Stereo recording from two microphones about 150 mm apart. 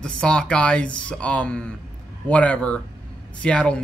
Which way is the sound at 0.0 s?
5° left (ahead or behind).